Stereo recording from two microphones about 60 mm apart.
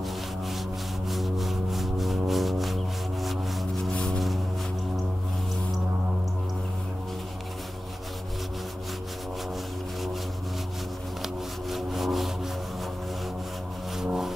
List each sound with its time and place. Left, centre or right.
1.1 s music: centre
3.9 s vehicle: centre
11.7 s rub: centre
13.9 s vehicle: centre